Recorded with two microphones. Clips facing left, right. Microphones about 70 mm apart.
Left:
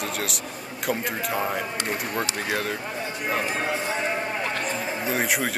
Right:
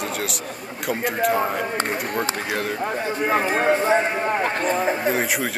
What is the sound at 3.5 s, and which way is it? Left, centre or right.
Speech, right.